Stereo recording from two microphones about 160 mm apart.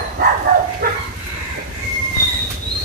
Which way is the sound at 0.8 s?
65° right (ahead or behind).